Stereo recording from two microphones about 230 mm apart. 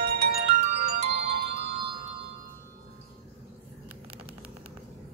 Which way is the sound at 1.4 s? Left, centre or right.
Right.